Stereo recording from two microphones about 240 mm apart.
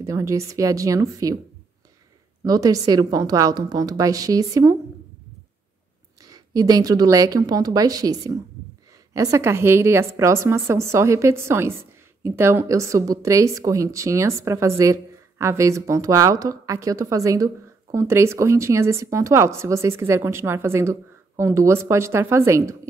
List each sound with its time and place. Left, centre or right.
0.0 s a woman's voice: centre
2.4 s a woman's voice: centre
6.2 s a woman's voice: centre